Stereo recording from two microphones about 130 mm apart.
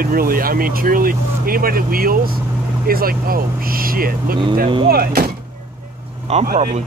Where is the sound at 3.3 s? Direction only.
90° right.